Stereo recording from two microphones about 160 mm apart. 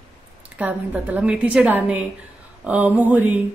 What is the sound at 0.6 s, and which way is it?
Speech, 10° right (ahead or behind).